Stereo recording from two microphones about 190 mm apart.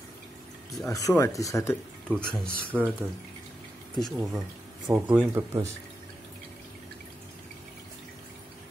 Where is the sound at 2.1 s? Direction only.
Centre (ahead or behind).